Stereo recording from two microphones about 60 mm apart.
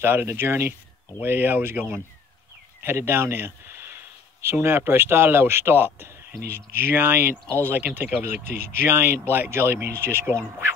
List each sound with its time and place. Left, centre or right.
0.0 s speech: right
2.8 s speech: right